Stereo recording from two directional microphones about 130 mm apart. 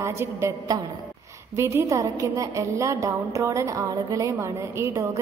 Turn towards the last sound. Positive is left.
turn(degrees=-25)  # may be behind; listen again after turning